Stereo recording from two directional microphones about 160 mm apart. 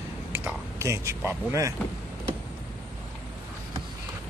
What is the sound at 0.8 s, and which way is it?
Speech, 20° right (ahead or behind).